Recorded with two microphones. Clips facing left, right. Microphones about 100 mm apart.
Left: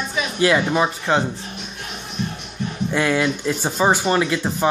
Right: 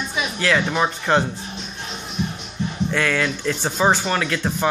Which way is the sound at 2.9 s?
20° left (ahead or behind).